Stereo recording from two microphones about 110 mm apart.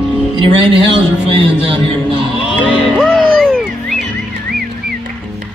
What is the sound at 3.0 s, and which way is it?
Music, 5° left (ahead or behind).